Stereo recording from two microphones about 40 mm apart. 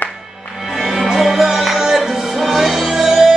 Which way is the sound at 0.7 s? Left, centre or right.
Centre.